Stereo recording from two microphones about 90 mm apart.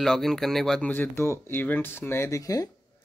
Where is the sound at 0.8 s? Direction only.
20° left (ahead or behind).